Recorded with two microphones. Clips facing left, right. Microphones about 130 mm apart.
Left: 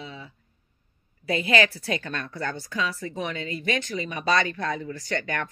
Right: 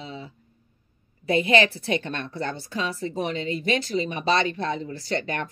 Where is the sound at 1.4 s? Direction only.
30° right (ahead or behind).